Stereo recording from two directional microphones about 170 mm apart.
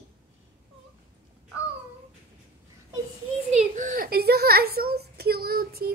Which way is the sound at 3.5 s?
50° right (ahead or behind).